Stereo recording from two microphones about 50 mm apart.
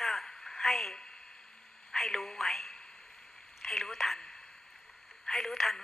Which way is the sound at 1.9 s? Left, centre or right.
Centre.